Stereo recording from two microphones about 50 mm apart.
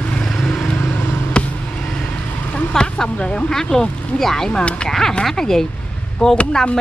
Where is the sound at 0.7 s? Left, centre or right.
Left.